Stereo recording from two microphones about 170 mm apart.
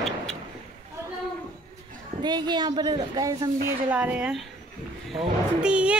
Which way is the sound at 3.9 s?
10° right (ahead or behind).